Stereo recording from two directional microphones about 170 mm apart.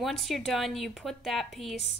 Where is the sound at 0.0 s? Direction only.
Centre (ahead or behind).